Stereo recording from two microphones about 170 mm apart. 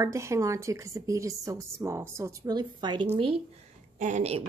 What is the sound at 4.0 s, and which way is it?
Speech, 45° right (ahead or behind).